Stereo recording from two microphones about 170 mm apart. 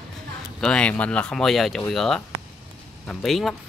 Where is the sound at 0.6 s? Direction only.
5° left (ahead or behind).